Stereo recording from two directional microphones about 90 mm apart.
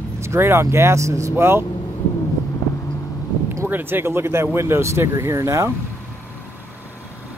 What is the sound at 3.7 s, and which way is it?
Speech, 20° right (ahead or behind).